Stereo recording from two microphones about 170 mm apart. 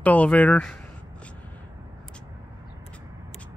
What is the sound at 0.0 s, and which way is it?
Mantra, 10° left (ahead or behind).